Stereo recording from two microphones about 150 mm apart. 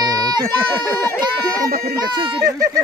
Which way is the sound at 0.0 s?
25° right (ahead or behind).